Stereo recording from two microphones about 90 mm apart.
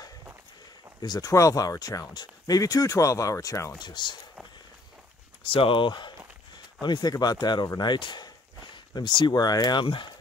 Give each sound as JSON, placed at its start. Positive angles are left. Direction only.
{"t": 1.0, "sound": "speech", "side_deg": 50}
{"t": 1.3, "sound": "speech", "side_deg": 40}
{"t": 3.7, "sound": "speech", "side_deg": 55}
{"t": 5.4, "sound": "speech", "side_deg": 80}
{"t": 9.8, "sound": "speech", "side_deg": 65}